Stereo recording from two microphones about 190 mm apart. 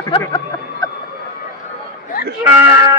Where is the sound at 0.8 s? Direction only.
20° left (ahead or behind).